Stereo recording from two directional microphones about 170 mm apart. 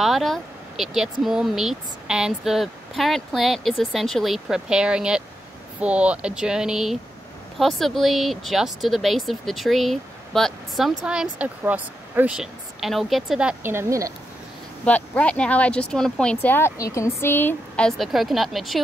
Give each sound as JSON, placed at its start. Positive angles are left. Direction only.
{"t": 0.0, "sound": "speech", "side_deg": 0}
{"t": 14.9, "sound": "speech", "side_deg": 10}